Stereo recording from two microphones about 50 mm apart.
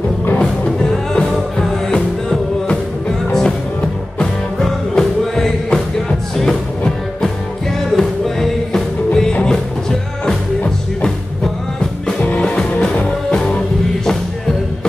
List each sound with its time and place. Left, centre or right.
0.3 s music: left
0.8 s music: centre
12.4 s music: centre